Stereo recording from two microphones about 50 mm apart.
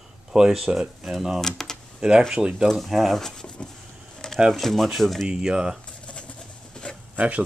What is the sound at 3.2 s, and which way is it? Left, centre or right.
Speech, centre.